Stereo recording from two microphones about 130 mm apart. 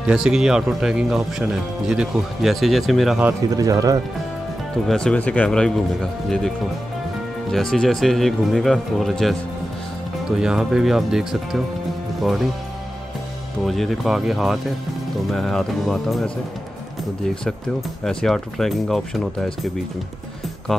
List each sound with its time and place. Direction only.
0.0 s speech: 5° right (ahead or behind)
3.5 s speech: 25° right (ahead or behind)
4.8 s speech: 5° left (ahead or behind)
7.5 s speech: 5° left (ahead or behind)
13.7 s speech: centre (ahead or behind)
18.0 s speech: 5° left (ahead or behind)